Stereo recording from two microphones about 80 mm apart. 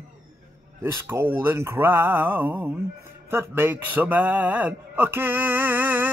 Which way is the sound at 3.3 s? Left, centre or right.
Right.